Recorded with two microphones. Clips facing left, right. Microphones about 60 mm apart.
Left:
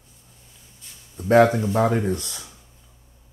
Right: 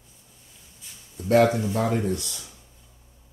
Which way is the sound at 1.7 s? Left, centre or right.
Left.